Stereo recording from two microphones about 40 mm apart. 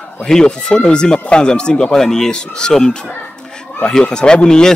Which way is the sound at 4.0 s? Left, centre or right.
Left.